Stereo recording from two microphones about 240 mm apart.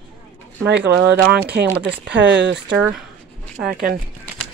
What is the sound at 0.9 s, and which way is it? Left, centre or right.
Speech, right.